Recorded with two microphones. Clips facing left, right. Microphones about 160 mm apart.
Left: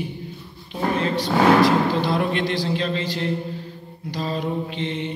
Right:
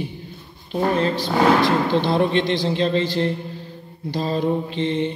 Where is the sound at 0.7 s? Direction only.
35° right (ahead or behind).